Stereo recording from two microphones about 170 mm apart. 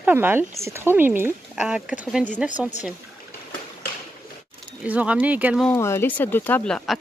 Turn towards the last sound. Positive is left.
turn(degrees=5)  # may be behind; listen again after turning